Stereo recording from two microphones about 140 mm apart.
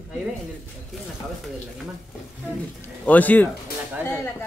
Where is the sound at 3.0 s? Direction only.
10° left (ahead or behind).